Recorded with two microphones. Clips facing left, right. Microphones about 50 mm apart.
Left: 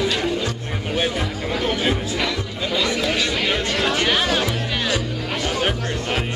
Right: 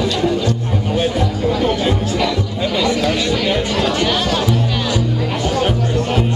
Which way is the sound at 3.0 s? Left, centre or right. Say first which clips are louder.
Right 4 dB; centre.